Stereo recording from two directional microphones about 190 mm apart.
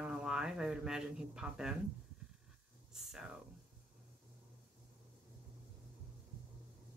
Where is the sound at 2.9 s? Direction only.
Centre (ahead or behind).